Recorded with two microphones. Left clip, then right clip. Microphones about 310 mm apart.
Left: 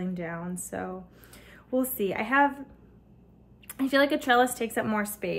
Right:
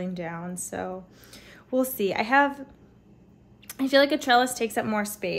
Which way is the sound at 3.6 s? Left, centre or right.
Centre.